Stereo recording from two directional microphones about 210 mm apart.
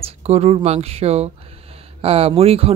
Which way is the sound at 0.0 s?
30° right (ahead or behind).